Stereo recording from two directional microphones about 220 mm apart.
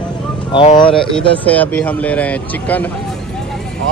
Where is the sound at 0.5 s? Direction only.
25° left (ahead or behind).